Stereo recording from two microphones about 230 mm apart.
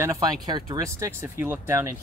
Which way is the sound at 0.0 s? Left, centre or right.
Centre.